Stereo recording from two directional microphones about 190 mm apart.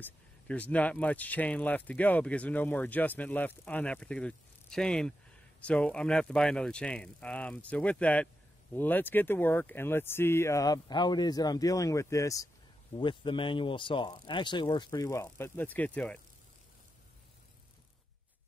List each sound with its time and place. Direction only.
0.0 s speech: 5° left (ahead or behind)